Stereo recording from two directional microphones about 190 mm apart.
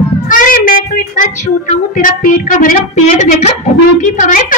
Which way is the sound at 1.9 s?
45° left (ahead or behind).